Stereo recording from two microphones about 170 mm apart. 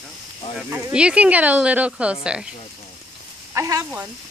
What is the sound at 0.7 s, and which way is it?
Speech, 5° right (ahead or behind).